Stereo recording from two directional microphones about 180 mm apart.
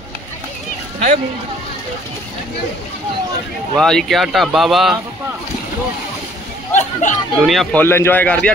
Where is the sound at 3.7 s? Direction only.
Centre (ahead or behind).